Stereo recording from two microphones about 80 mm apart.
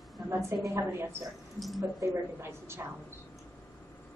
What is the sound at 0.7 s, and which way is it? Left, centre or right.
Speech, right.